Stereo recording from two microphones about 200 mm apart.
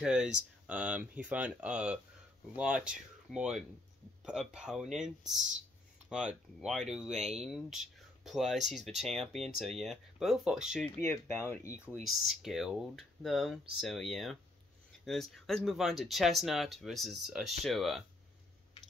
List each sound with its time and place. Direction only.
0.0 s speech: 5° right (ahead or behind)
7.1 s speech: 35° right (ahead or behind)
7.3 s speech: centre (ahead or behind)
11.0 s speech: 10° left (ahead or behind)
11.8 s speech: 5° right (ahead or behind)